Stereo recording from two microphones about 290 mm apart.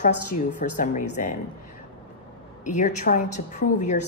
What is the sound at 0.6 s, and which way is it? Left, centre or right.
Speech, left.